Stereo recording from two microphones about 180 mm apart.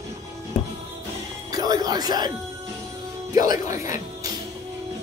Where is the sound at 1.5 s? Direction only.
20° right (ahead or behind).